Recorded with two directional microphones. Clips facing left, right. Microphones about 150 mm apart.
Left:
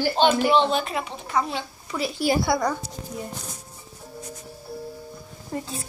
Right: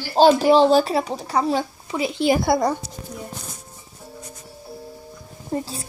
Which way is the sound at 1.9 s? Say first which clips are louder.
Right 4 dB; 20° right (ahead or behind).